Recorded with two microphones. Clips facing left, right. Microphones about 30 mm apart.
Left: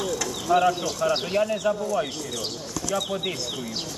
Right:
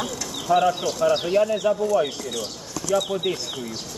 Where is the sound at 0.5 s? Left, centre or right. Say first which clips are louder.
Right 2 dB; centre.